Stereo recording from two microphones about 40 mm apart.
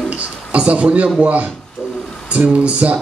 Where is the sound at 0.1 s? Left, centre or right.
Right.